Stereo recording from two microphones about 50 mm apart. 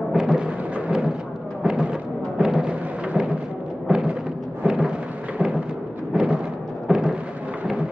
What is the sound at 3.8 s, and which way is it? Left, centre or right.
Music, centre.